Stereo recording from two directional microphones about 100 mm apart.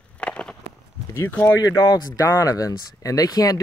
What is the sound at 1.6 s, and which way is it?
Speech, 40° left (ahead or behind).